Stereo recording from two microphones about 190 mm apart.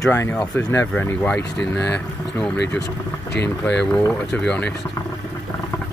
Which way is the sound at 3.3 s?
65° left (ahead or behind).